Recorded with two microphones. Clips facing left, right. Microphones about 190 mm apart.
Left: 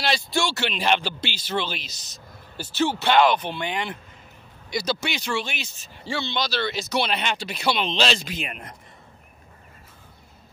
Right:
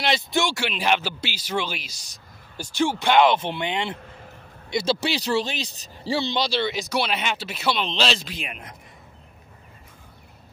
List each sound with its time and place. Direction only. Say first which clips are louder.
0.0 s speech: right 1 dB; 20° right (ahead or behind)
3.3 s speech: right 1 dB; 25° right (ahead or behind)
6.6 s speech: even; 15° right (ahead or behind)